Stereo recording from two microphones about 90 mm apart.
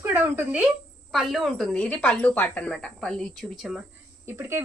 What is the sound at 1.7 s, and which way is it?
Speech, 10° left (ahead or behind).